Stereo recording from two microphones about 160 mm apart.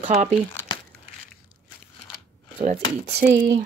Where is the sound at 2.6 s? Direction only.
50° right (ahead or behind).